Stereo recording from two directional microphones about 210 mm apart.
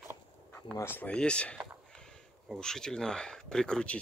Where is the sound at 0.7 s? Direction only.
10° left (ahead or behind).